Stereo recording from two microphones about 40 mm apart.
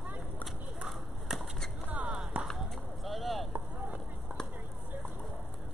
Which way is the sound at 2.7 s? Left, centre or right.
Centre.